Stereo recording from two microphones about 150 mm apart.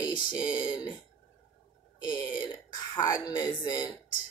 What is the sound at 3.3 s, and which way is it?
Speech, 30° left (ahead or behind).